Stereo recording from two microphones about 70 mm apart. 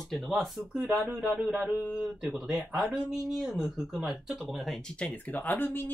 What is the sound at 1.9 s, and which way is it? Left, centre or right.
Speech, centre.